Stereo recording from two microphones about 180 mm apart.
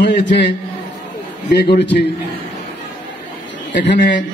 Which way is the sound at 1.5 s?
65° left (ahead or behind).